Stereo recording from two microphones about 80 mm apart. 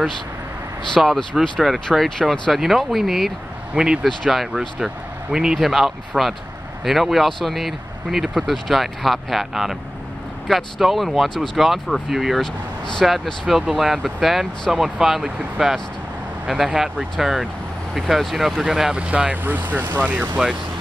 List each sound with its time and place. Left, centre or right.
0.9 s speech: centre
18.9 s speech: centre